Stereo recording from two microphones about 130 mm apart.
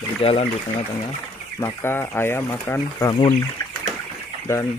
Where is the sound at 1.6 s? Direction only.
20° left (ahead or behind).